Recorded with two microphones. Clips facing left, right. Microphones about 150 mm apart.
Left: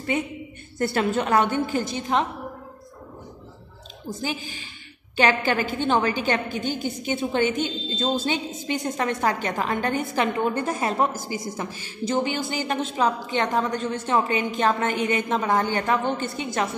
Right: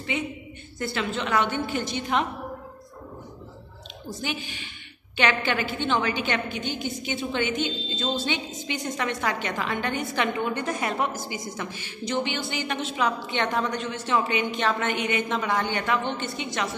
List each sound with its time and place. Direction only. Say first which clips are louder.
0.7 s a woman's voice: left 6 dB; 45° left (ahead or behind)
1.7 s a woman's voice: left 2 dB; 35° left (ahead or behind)
5.1 s a woman's voice: left 3 dB; 40° left (ahead or behind)